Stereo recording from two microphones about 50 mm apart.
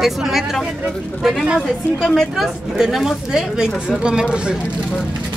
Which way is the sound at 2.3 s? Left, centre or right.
Centre.